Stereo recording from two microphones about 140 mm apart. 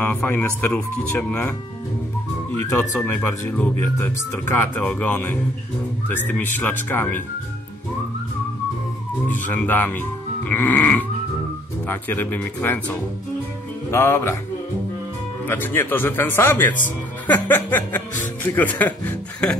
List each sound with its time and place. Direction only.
0.0 s speech: 15° left (ahead or behind)
2.7 s speech: 15° left (ahead or behind)
9.3 s speech: 10° left (ahead or behind)
15.4 s speech: 15° left (ahead or behind)